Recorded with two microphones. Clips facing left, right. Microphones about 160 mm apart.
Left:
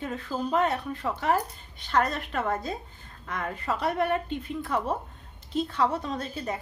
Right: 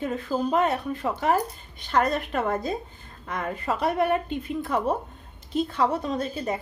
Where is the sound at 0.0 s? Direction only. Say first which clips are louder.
Right 5 dB; 15° right (ahead or behind).